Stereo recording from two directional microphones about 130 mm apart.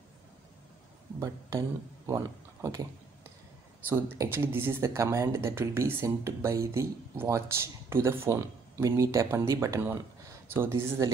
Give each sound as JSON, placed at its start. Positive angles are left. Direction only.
{"t": 1.2, "sound": "speech", "side_deg": -25}